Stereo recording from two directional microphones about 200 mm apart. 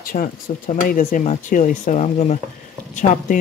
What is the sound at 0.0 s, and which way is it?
Speech, 45° left (ahead or behind).